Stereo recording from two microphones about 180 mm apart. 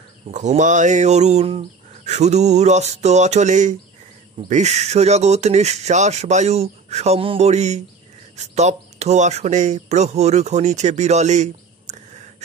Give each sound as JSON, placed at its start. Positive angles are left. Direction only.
{"t": 0.3, "sound": "speech", "side_deg": -45}